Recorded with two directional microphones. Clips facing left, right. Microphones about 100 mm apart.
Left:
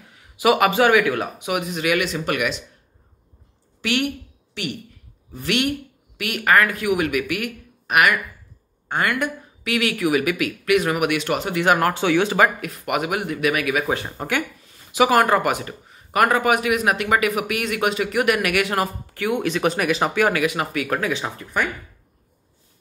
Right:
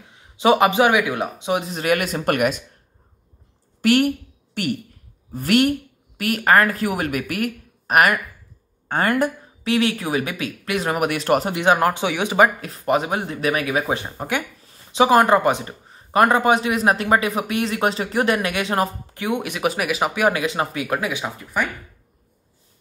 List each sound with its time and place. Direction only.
0.1 s speech: 25° right (ahead or behind); by 2.6 s 45° right (ahead or behind)
3.8 s a woman's voice: 40° right (ahead or behind)
11.5 s speech: 20° right (ahead or behind)
12.5 s speech: 30° right (ahead or behind)
14.0 s speech: 15° right (ahead or behind)
14.7 s speech: 25° right (ahead or behind); by 20.2 s 10° right (ahead or behind)
20.2 s speech: 25° right (ahead or behind)
20.9 s speech: 10° right (ahead or behind)